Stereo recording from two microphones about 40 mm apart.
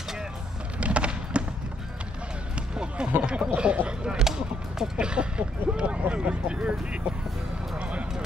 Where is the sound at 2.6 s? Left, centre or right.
Right.